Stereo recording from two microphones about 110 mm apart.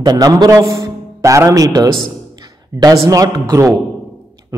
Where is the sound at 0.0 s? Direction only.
35° right (ahead or behind).